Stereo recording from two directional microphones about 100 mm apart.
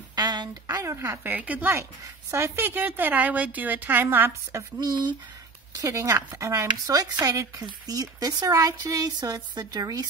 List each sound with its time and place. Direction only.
0.1 s a woman's voice: 45° right (ahead or behind); by 4.6 s 25° right (ahead or behind)
4.7 s speech: 45° right (ahead or behind)
5.8 s speech: 35° right (ahead or behind)